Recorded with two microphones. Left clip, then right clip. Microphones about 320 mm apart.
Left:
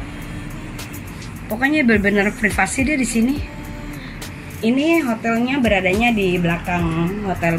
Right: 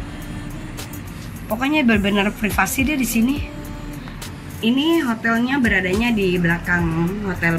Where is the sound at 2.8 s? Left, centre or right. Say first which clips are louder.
Left 1 dB; centre.